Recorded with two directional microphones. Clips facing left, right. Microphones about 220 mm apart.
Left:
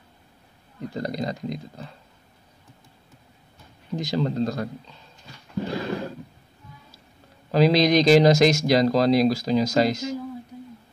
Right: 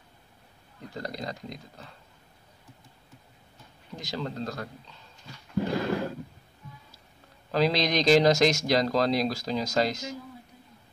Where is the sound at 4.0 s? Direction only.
20° left (ahead or behind).